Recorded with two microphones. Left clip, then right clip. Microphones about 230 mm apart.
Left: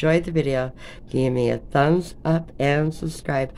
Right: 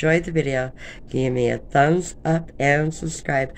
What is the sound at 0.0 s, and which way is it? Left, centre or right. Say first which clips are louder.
Speech: even; centre.